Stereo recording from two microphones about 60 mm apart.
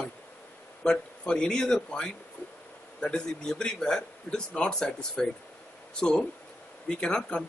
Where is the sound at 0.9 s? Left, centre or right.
Centre.